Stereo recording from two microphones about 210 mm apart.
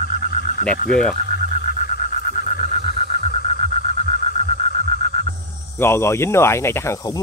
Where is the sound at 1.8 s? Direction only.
35° left (ahead or behind).